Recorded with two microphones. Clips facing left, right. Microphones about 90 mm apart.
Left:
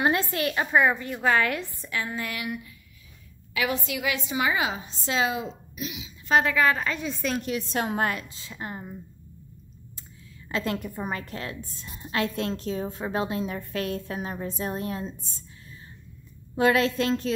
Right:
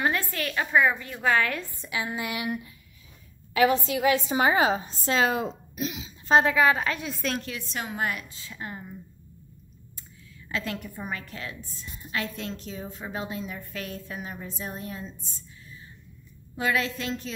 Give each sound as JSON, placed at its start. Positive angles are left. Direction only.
{"t": 0.0, "sound": "a woman's voice", "side_deg": 25}
{"t": 1.8, "sound": "a woman's voice", "side_deg": -10}
{"t": 6.6, "sound": "a woman's voice", "side_deg": -10}
{"t": 7.7, "sound": "a woman's voice", "side_deg": 45}
{"t": 8.2, "sound": "a woman's voice", "side_deg": 30}
{"t": 10.5, "sound": "a woman's voice", "side_deg": 35}
{"t": 16.5, "sound": "a woman's voice", "side_deg": 50}